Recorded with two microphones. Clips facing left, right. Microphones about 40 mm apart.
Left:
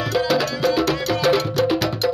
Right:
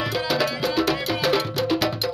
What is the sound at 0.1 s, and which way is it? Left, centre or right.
Music, centre.